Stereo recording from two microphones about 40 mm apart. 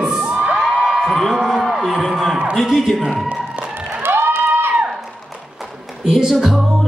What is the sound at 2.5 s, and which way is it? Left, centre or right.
Speech, centre.